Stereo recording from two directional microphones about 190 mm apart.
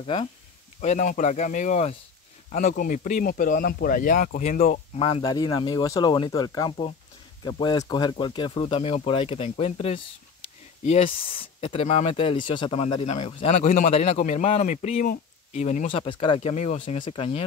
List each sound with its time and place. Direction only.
0.0 s speech: 30° left (ahead or behind)